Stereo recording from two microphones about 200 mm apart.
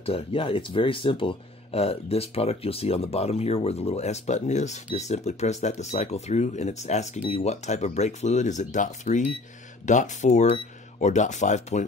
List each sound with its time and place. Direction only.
0.0 s speech: 25° left (ahead or behind)